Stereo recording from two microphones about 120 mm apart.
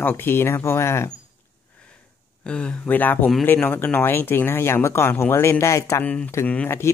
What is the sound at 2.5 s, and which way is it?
Speech, 10° left (ahead or behind).